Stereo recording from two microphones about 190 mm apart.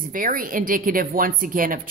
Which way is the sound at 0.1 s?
45° right (ahead or behind).